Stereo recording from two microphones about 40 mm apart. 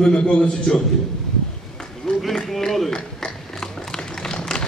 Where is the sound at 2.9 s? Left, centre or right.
Centre.